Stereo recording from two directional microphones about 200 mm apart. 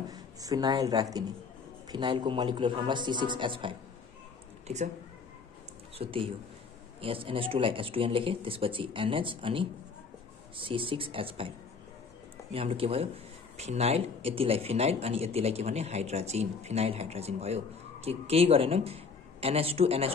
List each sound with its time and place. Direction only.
0.1 s speech: 20° right (ahead or behind); by 4.8 s 35° right (ahead or behind)
5.9 s speech: 25° right (ahead or behind)
12.5 s speech: 30° right (ahead or behind)